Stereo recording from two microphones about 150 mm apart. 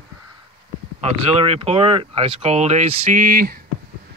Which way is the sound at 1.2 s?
40° right (ahead or behind).